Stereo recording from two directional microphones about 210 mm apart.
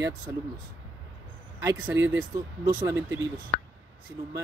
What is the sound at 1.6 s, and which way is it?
Speech, 15° right (ahead or behind).